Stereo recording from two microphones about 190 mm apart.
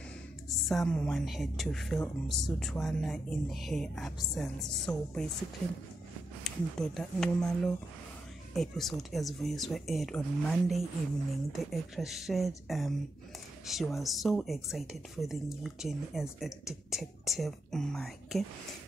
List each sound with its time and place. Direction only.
0.5 s speech: centre (ahead or behind)
6.4 s speech: centre (ahead or behind)